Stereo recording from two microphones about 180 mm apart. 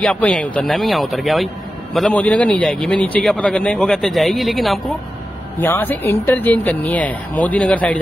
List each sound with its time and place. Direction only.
0.0 s a man's voice: 5° left (ahead or behind)
5.6 s speech: 10° left (ahead or behind)